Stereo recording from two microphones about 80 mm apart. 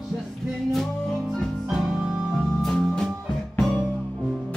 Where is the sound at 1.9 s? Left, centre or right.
Centre.